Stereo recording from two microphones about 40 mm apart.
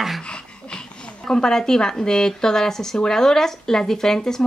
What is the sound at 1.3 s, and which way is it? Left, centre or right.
Speech, centre.